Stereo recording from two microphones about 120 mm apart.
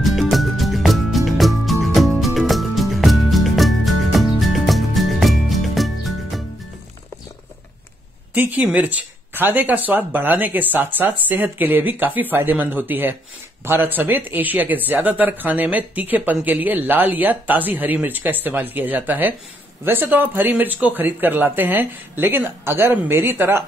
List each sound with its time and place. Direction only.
0.0 s music: centre (ahead or behind)
8.4 s speech: 15° right (ahead or behind)